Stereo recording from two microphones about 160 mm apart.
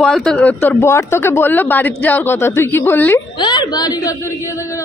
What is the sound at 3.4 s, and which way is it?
Speech, 30° left (ahead or behind).